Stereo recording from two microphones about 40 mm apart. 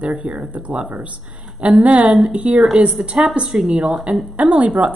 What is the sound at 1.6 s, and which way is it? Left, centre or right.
A woman's voice, right.